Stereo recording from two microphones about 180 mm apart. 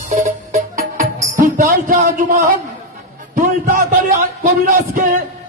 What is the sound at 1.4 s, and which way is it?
Music, 50° right (ahead or behind).